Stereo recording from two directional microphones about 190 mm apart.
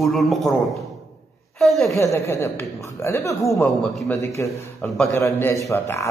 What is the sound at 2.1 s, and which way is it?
A man's voice, 15° left (ahead or behind).